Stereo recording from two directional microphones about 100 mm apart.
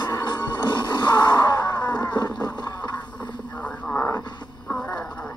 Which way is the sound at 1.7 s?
35° left (ahead or behind).